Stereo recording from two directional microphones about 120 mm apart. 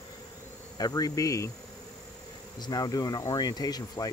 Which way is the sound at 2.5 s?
35° left (ahead or behind).